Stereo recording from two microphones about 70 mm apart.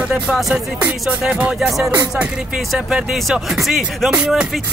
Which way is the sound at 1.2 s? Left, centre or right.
Centre.